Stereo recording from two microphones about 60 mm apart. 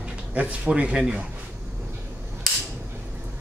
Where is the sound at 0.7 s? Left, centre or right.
Centre.